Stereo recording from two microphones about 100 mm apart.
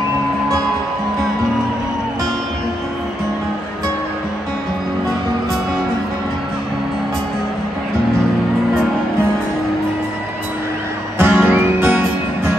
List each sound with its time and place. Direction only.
11.2 s music: 15° right (ahead or behind)